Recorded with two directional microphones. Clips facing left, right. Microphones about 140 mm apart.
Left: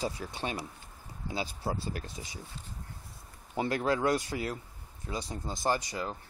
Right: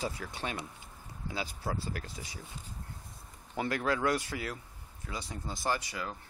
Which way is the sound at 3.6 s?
25° left (ahead or behind).